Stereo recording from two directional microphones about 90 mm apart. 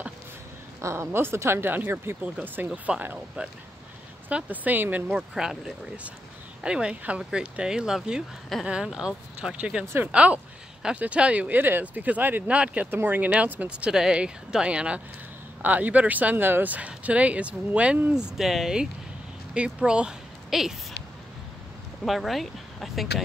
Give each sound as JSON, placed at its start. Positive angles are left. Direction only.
{"t": 0.7, "sound": "speech", "side_deg": -35}
{"t": 5.0, "sound": "speech", "side_deg": -5}
{"t": 18.1, "sound": "speech", "side_deg": -5}
{"t": 22.0, "sound": "speech", "side_deg": 0}